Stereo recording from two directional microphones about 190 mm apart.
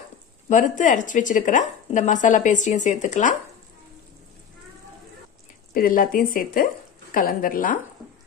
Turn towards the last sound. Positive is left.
turn(degrees=45)  # may be behind; listen again after turning